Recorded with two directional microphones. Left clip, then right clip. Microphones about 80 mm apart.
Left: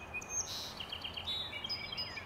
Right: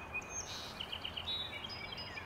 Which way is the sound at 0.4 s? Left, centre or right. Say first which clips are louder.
Left 3 dB; left.